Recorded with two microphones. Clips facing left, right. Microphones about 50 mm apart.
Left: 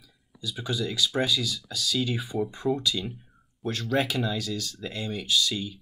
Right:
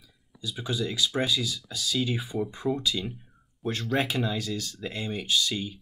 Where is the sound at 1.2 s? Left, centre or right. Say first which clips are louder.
Left 1 dB; right.